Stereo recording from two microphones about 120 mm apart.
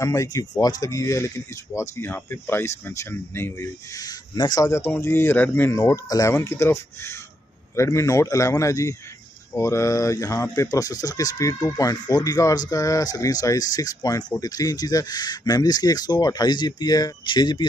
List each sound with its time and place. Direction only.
0.0 s speech: 25° left (ahead or behind)